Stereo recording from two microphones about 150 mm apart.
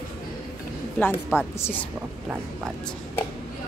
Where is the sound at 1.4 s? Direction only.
15° left (ahead or behind).